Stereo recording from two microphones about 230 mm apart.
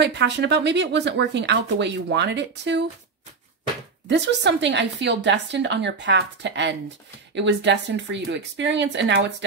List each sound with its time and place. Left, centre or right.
0.0 s speech: right
4.1 s speech: right